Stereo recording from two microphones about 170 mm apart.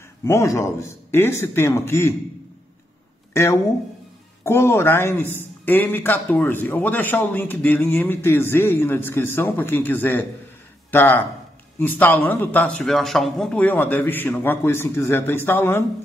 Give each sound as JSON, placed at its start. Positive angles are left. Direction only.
{"t": 0.2, "sound": "a man's voice", "side_deg": 15}
{"t": 3.3, "sound": "a man's voice", "side_deg": 15}